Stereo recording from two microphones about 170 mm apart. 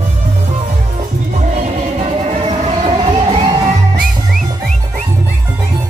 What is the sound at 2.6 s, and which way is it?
Music, 35° right (ahead or behind).